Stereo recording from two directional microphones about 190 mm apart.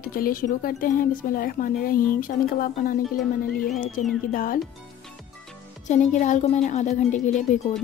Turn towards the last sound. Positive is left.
turn(degrees=40)  # may be behind; listen again after turning